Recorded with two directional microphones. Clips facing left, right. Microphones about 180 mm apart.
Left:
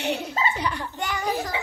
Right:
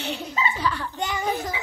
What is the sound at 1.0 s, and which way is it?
Speech, 20° right (ahead or behind).